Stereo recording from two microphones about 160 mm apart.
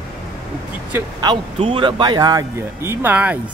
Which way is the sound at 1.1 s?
30° right (ahead or behind).